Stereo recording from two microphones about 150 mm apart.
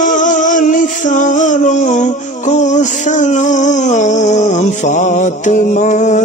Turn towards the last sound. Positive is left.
turn(degrees=55)  # may be behind; listen again after turning